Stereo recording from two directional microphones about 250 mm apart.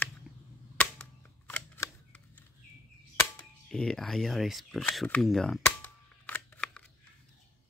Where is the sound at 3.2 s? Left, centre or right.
Centre.